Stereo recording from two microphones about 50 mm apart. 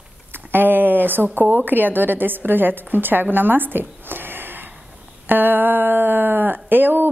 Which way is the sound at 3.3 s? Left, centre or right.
Right.